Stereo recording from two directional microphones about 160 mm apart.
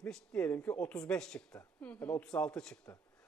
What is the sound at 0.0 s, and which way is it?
A woman's voice, 5° left (ahead or behind).